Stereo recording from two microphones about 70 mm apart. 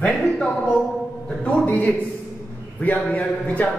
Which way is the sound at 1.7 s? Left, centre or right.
Left.